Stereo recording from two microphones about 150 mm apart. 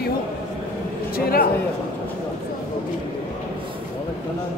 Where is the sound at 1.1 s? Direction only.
80° left.